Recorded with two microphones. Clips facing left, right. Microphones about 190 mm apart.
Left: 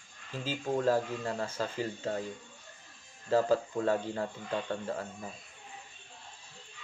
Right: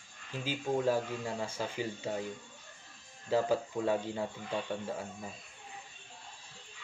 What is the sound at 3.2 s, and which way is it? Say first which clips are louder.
Speech: left 3 dB; 15° right (ahead or behind).